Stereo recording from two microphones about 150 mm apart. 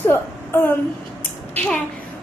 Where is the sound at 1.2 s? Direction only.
10° left (ahead or behind).